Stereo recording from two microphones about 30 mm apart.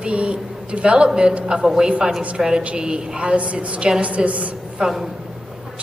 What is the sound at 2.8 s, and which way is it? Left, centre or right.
Speech, right.